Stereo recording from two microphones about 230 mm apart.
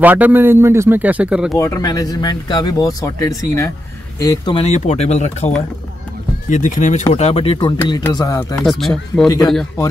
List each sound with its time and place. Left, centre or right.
0.0 s a man's voice: centre
1.6 s speech: centre
6.5 s speech: left; by 8.5 s centre
8.6 s speech: centre